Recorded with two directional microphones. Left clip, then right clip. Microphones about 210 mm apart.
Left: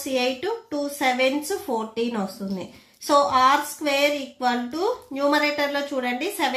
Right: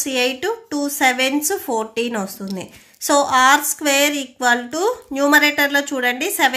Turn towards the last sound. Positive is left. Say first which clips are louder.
# right 7 dB
turn(degrees=-40)  # may be behind; listen again after turning